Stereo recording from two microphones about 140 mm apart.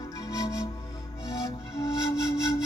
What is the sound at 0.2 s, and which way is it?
Music, 25° left (ahead or behind).